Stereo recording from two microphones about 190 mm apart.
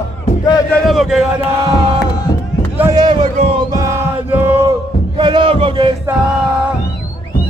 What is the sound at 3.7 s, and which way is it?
Music, 15° right (ahead or behind).